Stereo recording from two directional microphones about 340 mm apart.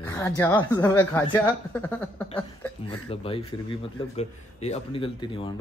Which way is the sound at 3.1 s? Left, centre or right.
Centre.